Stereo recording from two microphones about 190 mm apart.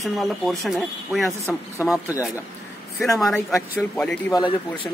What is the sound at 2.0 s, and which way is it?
Speech, 15° left (ahead or behind).